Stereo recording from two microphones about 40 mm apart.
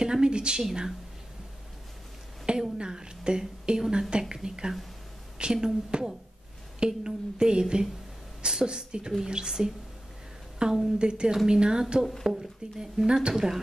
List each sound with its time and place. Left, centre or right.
0.0 s a sound: centre
2.5 s a woman's voice: right
12.3 s speech: centre